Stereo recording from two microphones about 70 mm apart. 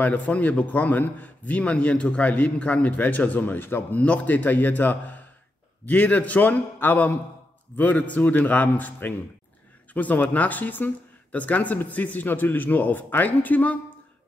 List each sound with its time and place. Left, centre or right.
0.0 s a man's voice: left
4.0 s a man's voice: centre